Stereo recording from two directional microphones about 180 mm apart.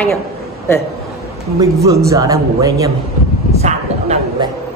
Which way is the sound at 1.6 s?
15° right (ahead or behind).